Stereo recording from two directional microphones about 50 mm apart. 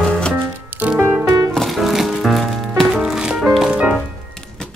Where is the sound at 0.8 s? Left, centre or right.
Right.